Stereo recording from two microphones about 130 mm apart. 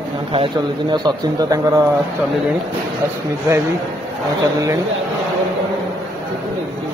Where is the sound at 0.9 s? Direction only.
30° right (ahead or behind).